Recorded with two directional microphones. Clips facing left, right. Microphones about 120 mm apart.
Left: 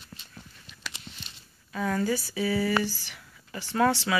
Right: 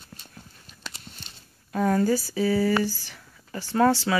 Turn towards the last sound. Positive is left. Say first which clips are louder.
# right 3 dB
turn(degrees=-35)  # may be behind; listen again after turning